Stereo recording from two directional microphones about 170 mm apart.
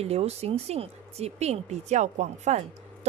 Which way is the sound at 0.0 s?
40° right (ahead or behind).